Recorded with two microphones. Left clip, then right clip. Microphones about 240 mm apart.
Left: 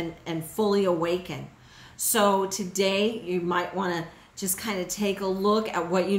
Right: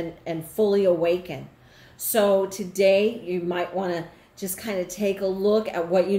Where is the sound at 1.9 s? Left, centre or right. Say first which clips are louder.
Right 2 dB; centre.